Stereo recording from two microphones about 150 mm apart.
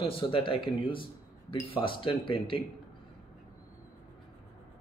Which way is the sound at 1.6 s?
35° left (ahead or behind).